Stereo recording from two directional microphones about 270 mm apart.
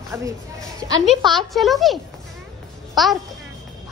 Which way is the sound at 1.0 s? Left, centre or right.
Centre.